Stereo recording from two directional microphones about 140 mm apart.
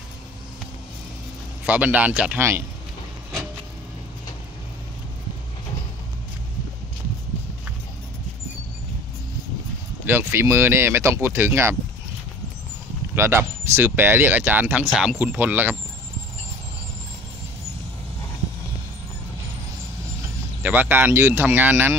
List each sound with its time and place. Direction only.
1.7 s speech: 10° right (ahead or behind)
10.0 s speech: 15° right (ahead or behind)
13.1 s speech: 15° right (ahead or behind)
20.6 s speech: 15° right (ahead or behind)